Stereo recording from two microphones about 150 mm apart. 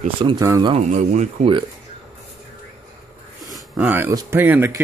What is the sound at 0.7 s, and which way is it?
Speech, 50° right (ahead or behind).